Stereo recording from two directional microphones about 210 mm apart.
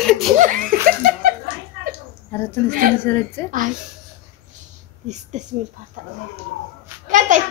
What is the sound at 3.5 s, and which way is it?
Speech, 40° right (ahead or behind).